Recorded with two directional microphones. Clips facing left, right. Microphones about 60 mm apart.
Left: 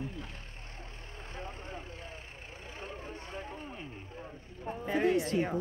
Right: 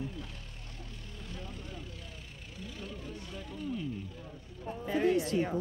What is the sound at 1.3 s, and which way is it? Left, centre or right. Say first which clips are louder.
Vehicle: left 3 dB; left.